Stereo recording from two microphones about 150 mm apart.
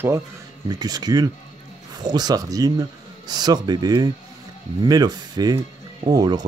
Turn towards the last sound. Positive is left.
turn(degrees=-25)  # may be behind; listen again after turning